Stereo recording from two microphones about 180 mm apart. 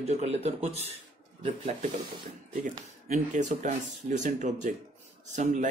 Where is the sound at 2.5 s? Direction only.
45° right (ahead or behind).